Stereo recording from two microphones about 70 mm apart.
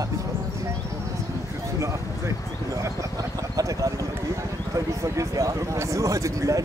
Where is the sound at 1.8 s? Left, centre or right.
Right.